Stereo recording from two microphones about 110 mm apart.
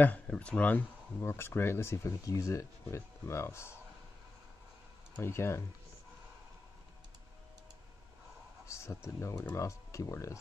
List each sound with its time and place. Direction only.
0.0 s speech: 10° left (ahead or behind)
5.1 s speech: 20° left (ahead or behind)
8.6 s speech: 25° left (ahead or behind)